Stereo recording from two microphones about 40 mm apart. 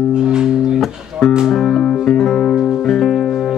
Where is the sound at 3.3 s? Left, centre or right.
Centre.